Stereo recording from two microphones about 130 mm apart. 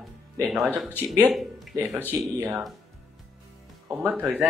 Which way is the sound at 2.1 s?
15° right (ahead or behind).